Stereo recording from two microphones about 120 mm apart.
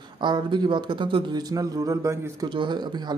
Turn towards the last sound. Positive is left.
turn(degrees=-40)  # may be behind; listen again after turning